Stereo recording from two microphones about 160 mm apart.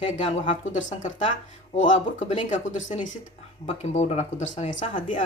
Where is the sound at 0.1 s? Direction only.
45° left (ahead or behind).